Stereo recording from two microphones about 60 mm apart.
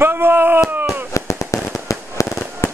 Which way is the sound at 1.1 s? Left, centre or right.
Left.